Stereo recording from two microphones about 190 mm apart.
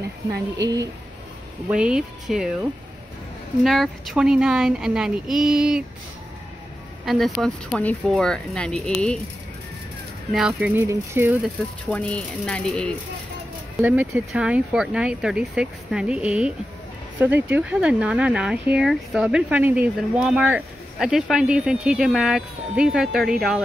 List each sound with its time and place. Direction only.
0.6 s speech: 20° right (ahead or behind)
1.7 s speech: 5° right (ahead or behind)
3.6 s speech: centre (ahead or behind)
7.1 s speech: centre (ahead or behind)
10.3 s speech: 5° right (ahead or behind)
11.4 s speech: 5° left (ahead or behind)
13.7 s speech: 10° right (ahead or behind)